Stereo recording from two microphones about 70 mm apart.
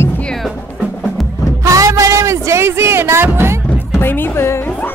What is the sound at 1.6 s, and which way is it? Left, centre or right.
Speech, right.